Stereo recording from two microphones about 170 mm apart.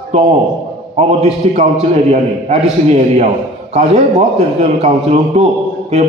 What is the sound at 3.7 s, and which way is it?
A man's voice, 40° right (ahead or behind).